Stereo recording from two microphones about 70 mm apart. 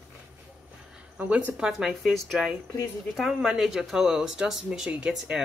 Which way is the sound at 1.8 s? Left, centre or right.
Centre.